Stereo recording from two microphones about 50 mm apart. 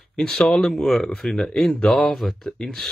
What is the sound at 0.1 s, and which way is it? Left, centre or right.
Speech, centre.